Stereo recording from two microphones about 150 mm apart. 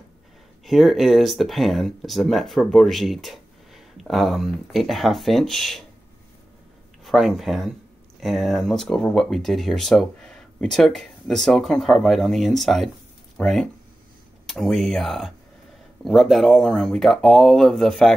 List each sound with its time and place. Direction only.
0.7 s speech: centre (ahead or behind)
7.1 s speech: centre (ahead or behind)